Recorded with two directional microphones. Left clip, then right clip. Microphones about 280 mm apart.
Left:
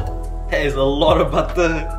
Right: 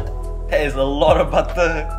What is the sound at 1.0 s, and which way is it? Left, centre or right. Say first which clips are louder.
Speech: right 3 dB; centre.